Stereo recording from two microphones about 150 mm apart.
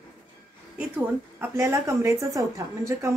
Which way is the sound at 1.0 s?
15° right (ahead or behind).